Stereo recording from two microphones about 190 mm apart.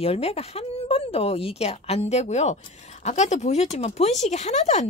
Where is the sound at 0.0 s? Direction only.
30° left (ahead or behind).